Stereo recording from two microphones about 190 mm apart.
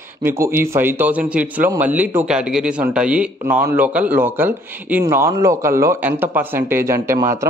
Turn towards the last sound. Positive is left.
turn(degrees=-15)  # may be behind; listen again after turning